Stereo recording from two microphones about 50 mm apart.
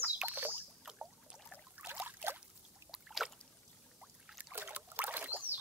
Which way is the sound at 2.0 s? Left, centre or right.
Right.